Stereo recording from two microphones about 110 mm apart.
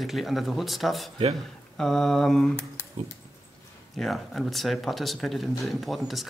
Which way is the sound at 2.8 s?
20° left (ahead or behind).